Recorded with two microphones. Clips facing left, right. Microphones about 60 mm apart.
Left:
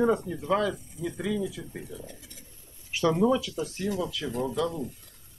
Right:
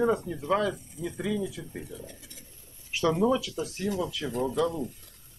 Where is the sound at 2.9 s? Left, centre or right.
Centre.